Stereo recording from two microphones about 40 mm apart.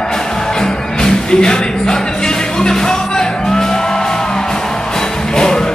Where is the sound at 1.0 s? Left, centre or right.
Centre.